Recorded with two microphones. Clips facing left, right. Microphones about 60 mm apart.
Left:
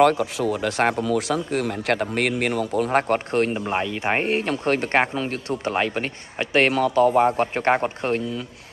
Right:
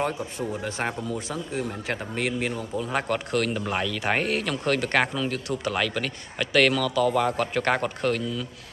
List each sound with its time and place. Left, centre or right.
0.0 s speech: left
2.9 s speech: left